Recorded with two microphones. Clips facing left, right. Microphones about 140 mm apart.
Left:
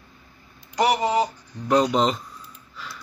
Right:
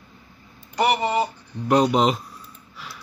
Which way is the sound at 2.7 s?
5° right (ahead or behind).